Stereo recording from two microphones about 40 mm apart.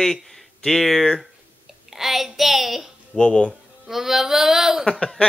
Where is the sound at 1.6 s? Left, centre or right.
Centre.